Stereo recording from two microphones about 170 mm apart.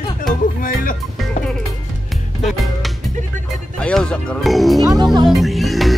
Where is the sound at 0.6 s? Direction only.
55° left (ahead or behind).